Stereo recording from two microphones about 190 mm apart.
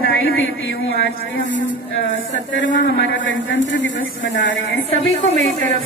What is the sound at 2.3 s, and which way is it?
A man's voice, 75° left (ahead or behind).